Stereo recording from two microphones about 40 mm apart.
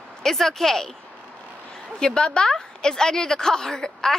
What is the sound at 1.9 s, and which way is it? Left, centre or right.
A woman's voice, left.